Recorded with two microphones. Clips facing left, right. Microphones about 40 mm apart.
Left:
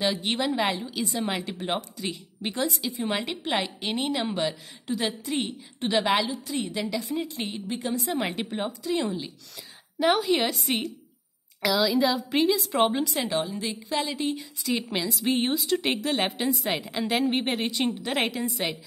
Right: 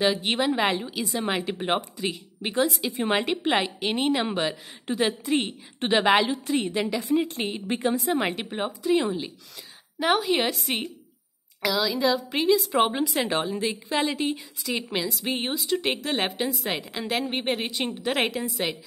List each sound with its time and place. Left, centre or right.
0.0 s a woman's voice: centre
0.9 s a woman's voice: centre
1.4 s a woman's voice: right
2.0 s a woman's voice: centre
4.9 s a woman's voice: right
6.2 s a woman's voice: right
6.6 s a woman's voice: right
7.6 s a woman's voice: right
8.1 s a woman's voice: centre
13.3 s a woman's voice: right
14.1 s speech: centre